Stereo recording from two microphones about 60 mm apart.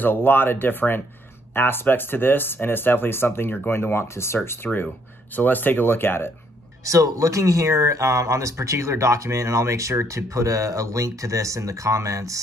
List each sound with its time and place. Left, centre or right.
0.0 s speech: left
4.6 s speech: centre
5.3 s speech: left
6.8 s speech: right